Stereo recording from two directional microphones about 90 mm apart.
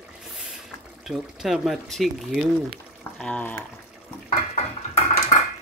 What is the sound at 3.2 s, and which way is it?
Speech, 15° left (ahead or behind).